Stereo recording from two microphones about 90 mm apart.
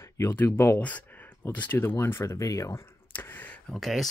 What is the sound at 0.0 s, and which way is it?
Speech, 25° left (ahead or behind).